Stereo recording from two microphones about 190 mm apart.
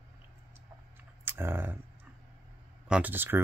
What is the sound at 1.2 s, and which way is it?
Speech, 10° right (ahead or behind).